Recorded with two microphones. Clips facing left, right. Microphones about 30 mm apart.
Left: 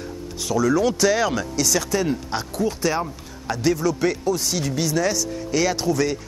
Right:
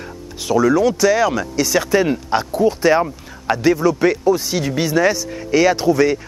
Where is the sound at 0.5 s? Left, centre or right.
Centre.